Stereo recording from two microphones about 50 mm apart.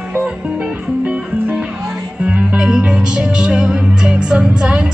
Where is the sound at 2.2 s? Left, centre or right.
Centre.